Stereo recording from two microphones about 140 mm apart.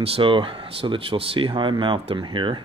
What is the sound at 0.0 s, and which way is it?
Speech, 40° right (ahead or behind).